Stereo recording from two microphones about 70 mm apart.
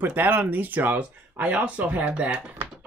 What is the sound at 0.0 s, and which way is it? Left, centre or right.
Speech, right.